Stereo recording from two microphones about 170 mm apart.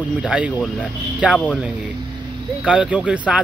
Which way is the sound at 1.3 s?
5° left (ahead or behind).